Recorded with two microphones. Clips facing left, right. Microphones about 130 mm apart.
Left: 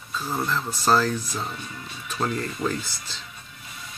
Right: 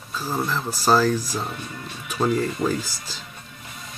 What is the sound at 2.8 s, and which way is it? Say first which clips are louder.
Speech: right 3 dB; 40° right (ahead or behind).